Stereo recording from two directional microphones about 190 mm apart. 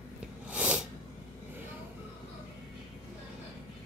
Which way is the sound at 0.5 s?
5° right (ahead or behind).